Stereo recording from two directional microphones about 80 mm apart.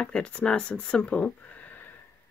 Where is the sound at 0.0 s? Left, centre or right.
Centre.